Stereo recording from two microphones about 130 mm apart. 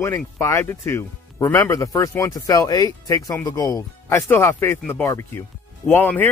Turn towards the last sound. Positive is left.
turn(degrees=15)  # may be behind; listen again after turning